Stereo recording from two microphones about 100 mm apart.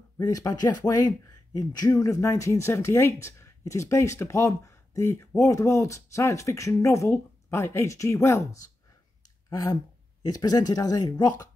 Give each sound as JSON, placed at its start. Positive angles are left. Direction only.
{"t": 0.2, "sound": "speech", "side_deg": 35}
{"t": 9.5, "sound": "speech", "side_deg": 40}